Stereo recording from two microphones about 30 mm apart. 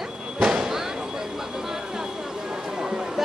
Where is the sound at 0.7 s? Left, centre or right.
Centre.